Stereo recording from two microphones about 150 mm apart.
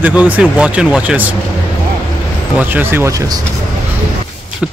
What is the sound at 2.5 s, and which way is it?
Speech, 15° right (ahead or behind).